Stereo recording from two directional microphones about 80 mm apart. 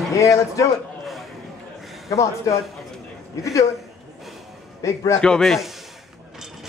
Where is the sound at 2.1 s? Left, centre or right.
Left.